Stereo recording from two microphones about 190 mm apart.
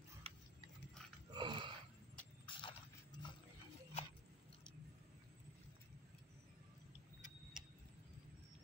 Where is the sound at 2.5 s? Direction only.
25° left (ahead or behind).